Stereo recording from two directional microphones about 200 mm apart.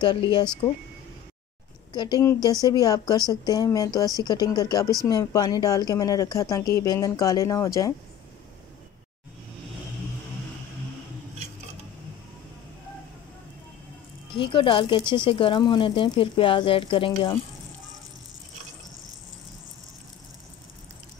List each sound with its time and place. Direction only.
0.0 s speech: 25° left (ahead or behind)
2.0 s a woman's voice: 20° left (ahead or behind)
14.3 s speech: 25° left (ahead or behind)